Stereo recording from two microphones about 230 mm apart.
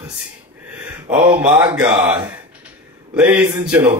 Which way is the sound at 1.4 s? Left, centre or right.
Centre.